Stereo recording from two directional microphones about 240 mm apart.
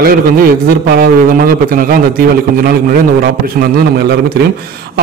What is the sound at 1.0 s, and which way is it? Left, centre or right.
A man's voice, right.